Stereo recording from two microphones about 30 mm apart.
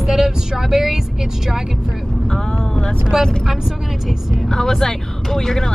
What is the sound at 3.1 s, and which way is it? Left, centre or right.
Speech, centre.